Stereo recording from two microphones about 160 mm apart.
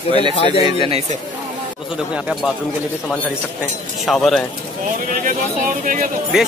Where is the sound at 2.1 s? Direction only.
5° right (ahead or behind).